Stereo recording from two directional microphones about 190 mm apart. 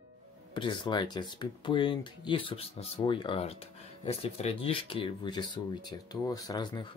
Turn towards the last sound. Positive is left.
turn(degrees=20)  # may be behind; listen again after turning